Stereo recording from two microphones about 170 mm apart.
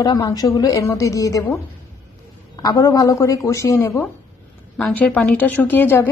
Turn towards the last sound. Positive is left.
turn(degrees=10)  # may be behind; listen again after turning